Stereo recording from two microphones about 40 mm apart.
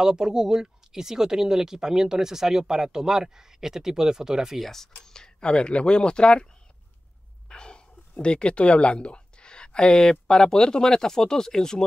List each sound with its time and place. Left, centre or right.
0.0 s speech: centre
4.6 s speech: centre
7.4 s a sound: left
8.1 s speech: left